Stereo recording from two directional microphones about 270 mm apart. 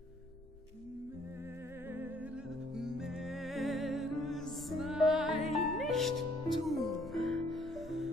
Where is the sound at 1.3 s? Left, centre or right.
Centre.